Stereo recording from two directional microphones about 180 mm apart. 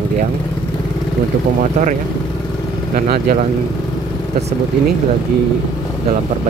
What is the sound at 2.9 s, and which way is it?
Speech, 60° right (ahead or behind).